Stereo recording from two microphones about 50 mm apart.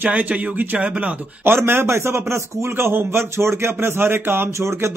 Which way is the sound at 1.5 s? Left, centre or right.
Right.